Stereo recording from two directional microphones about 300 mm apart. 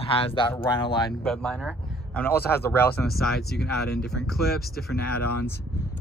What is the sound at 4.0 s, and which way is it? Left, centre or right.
Speech, centre.